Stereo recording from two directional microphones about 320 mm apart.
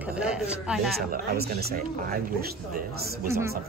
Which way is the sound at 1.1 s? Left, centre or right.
Right.